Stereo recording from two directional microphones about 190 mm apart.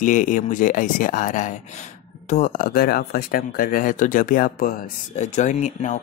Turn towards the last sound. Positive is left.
turn(degrees=40)  # may be behind; listen again after turning